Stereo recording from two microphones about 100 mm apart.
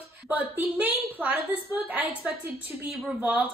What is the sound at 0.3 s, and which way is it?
A woman's voice, 15° right (ahead or behind).